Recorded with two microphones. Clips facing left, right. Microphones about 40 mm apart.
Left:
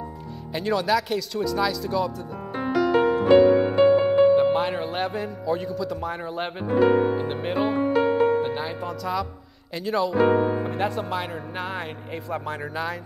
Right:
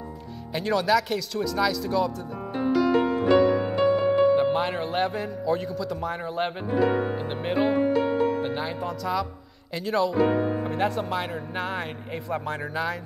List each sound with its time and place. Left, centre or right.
0.5 s a man's voice: centre
2.7 s music: centre
3.0 s music: centre
3.3 s music: centre
4.4 s a man's voice: centre
10.1 s speech: left
10.6 s a man's voice: centre